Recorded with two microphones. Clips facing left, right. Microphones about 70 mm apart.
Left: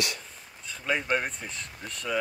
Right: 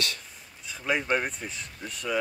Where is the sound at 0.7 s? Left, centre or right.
Centre.